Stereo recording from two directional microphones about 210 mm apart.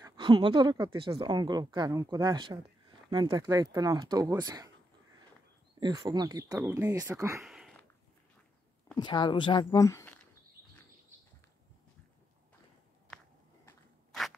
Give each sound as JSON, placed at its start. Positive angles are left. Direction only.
{"t": 0.0, "sound": "speech", "side_deg": -20}
{"t": 5.8, "sound": "speech", "side_deg": -20}
{"t": 7.4, "sound": "a sound", "side_deg": 0}
{"t": 8.9, "sound": "speech", "side_deg": 20}